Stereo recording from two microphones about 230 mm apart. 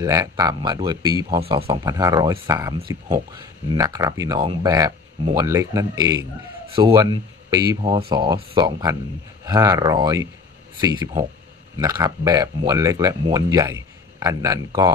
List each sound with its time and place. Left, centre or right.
0.0 s speech: centre